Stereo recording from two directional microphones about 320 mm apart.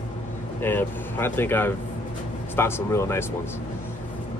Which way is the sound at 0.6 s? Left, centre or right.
Centre.